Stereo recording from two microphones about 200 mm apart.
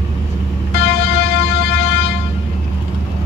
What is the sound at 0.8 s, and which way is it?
Music, 60° left (ahead or behind).